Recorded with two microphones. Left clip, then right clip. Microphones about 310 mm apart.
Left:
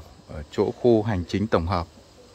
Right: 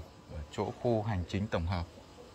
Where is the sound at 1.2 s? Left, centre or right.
Centre.